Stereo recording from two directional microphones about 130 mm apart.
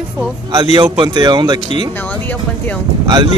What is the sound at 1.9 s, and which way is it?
Speech, 15° left (ahead or behind).